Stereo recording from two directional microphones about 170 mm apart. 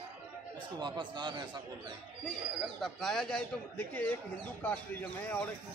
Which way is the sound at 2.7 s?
Centre (ahead or behind).